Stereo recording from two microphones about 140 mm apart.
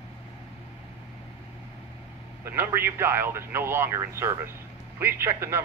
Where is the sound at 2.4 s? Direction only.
15° right (ahead or behind).